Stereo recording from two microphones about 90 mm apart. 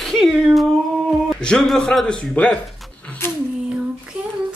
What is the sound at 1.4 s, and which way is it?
A man's voice, 10° left (ahead or behind).